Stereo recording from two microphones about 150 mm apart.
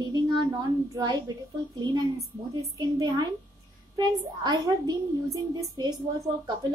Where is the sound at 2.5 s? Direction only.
25° right (ahead or behind).